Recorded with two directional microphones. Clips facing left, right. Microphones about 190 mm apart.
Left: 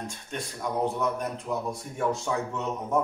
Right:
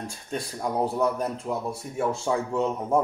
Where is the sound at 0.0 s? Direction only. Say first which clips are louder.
Right 3 dB; 35° right (ahead or behind).